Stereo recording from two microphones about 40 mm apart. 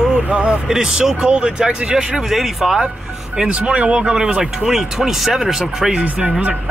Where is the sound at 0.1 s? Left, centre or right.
Right.